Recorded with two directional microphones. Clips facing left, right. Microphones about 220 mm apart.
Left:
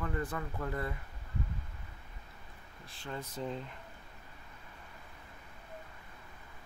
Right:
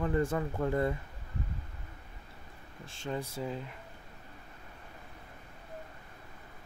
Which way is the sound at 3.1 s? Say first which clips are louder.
Right 3 dB; 10° right (ahead or behind).